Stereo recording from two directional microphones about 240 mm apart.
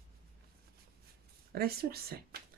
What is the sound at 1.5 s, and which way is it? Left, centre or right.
Speech, right.